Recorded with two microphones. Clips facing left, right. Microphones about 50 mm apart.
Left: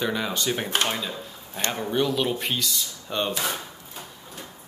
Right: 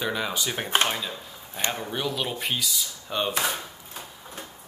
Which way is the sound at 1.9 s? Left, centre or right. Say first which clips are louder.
Left 5 dB; centre.